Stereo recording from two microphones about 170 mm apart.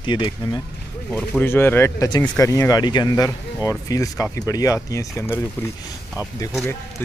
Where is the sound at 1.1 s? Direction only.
10° left (ahead or behind).